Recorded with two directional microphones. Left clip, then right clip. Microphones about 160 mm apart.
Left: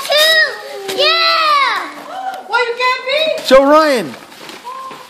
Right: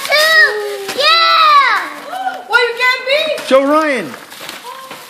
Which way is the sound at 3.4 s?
25° left (ahead or behind).